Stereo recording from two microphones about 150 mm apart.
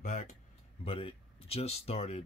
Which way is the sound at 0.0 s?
55° left (ahead or behind).